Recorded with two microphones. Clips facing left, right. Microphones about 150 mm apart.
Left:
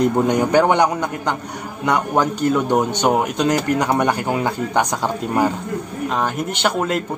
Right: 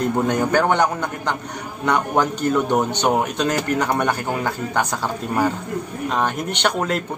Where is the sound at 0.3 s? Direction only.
15° left (ahead or behind).